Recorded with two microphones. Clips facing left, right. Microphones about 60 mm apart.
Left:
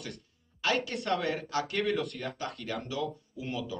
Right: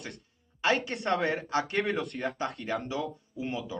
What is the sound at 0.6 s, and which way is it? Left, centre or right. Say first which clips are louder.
Speech: right 3 dB; right.